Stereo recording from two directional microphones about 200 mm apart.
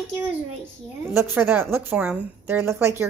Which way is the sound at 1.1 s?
10° right (ahead or behind).